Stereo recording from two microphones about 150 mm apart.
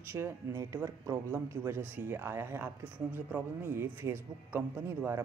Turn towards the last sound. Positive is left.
turn(degrees=-15)  # may be behind; listen again after turning